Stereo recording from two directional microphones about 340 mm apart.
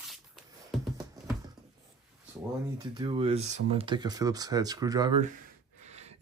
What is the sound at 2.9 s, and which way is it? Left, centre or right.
Speech, centre.